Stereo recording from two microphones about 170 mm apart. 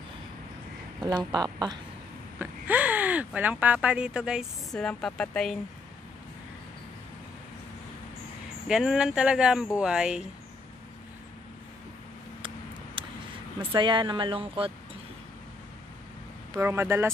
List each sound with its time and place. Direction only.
1.0 s speech: 25° right (ahead or behind)
2.3 s speech: 10° right (ahead or behind)
8.6 s speech: 5° right (ahead or behind)
12.4 s a sound: 30° right (ahead or behind)
13.7 s speech: 30° right (ahead or behind)
16.5 s speech: 15° right (ahead or behind)